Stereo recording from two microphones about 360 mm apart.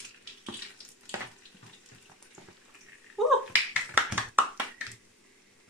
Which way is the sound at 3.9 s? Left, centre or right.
Centre.